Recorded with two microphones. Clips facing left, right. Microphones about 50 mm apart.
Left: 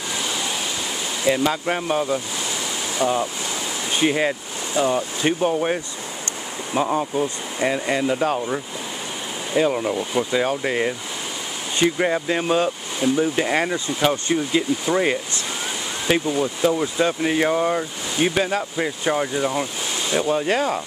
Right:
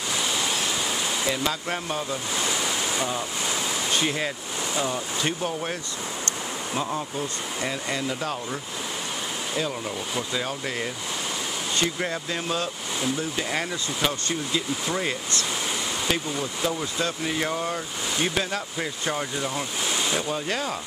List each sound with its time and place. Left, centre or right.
1.2 s speech: centre
3.9 s speech: centre
9.6 s speech: left